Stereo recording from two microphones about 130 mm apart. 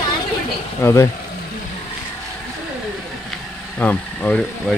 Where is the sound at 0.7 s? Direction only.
20° left (ahead or behind).